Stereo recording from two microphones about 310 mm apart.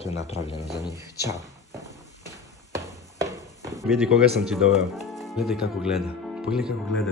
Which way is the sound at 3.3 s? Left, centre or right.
Centre.